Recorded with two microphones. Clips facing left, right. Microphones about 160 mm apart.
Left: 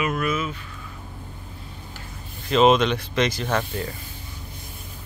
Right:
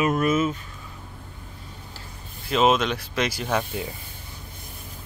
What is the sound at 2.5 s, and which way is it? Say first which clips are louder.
Speech: left 3 dB; 5° right (ahead or behind).